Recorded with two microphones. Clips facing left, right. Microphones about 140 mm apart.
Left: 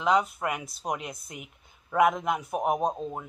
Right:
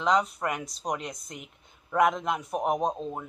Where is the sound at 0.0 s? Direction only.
5° left (ahead or behind).